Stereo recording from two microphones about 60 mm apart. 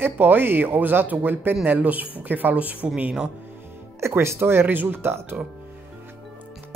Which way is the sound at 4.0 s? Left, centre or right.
Right.